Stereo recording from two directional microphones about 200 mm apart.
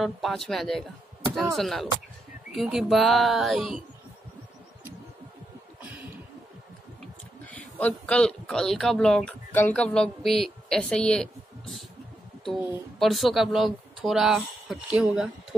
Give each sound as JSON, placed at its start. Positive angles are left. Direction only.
{"t": 0.0, "sound": "speech", "side_deg": 0}
{"t": 5.8, "sound": "a sound", "side_deg": -10}
{"t": 7.4, "sound": "speech", "side_deg": 5}
{"t": 12.4, "sound": "speech", "side_deg": -5}